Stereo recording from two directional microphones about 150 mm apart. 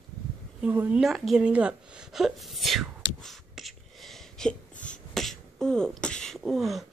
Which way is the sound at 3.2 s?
Centre (ahead or behind).